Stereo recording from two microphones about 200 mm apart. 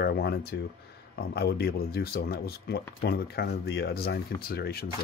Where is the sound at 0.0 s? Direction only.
55° left (ahead or behind).